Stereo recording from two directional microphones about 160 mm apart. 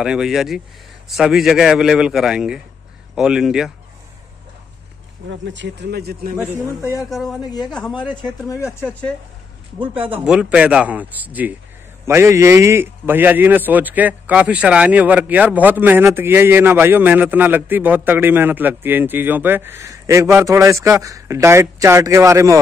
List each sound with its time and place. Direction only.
0.0 s a man's voice: 5° right (ahead or behind)
5.4 s speech: 90° right
6.8 s speech: 20° left (ahead or behind)
7.1 s a man's voice: centre (ahead or behind)
9.8 s a man's voice: 10° right (ahead or behind)